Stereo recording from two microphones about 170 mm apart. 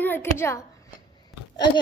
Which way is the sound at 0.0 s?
15° left (ahead or behind).